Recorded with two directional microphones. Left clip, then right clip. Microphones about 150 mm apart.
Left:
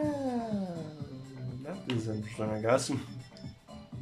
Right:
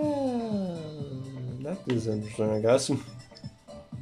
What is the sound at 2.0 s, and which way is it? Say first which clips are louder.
Speech: right 6 dB; 15° right (ahead or behind).